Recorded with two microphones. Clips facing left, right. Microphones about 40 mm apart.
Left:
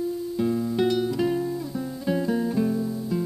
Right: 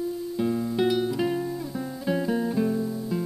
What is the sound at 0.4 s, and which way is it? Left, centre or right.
Music, centre.